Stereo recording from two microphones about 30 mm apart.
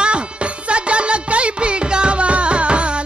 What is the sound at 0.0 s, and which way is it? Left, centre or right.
Music, right.